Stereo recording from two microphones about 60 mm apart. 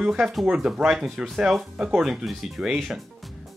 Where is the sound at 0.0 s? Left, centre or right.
Centre.